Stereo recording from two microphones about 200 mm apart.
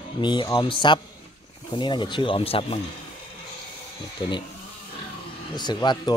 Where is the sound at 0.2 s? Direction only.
20° left (ahead or behind).